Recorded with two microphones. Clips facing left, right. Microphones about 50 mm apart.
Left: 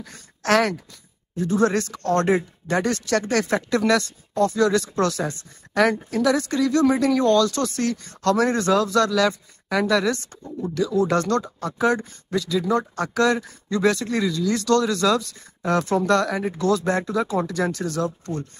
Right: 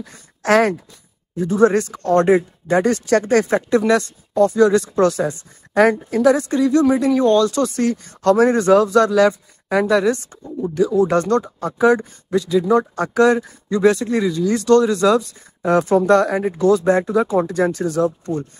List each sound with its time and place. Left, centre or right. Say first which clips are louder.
0.0 s a man's voice: right 4 dB; right